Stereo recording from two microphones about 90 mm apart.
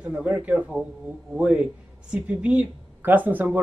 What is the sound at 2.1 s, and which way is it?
Speech, 15° right (ahead or behind).